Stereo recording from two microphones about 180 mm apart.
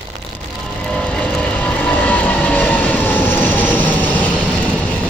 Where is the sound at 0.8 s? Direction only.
5° left (ahead or behind).